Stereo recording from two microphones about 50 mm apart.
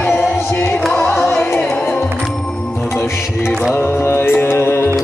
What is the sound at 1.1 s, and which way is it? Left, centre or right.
Music, centre.